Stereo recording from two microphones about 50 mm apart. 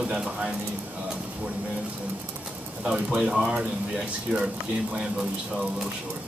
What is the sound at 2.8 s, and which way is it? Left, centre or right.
Speech, right.